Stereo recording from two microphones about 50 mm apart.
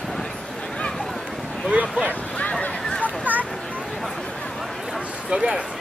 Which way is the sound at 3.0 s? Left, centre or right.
Right.